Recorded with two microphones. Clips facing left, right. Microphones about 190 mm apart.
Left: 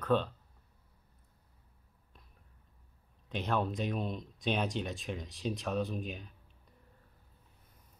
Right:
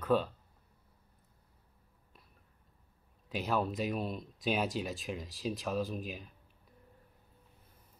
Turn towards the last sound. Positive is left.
turn(degrees=0)  # may be behind; listen again after turning